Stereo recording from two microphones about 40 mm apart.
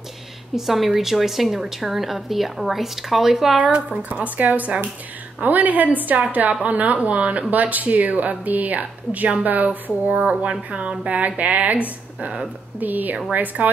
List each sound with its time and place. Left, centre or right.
0.6 s a woman's voice: centre
3.5 s a woman's voice: right
7.0 s a woman's voice: right
12.8 s speech: right